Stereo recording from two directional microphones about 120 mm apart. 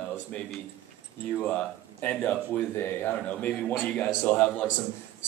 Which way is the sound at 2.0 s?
15° left (ahead or behind).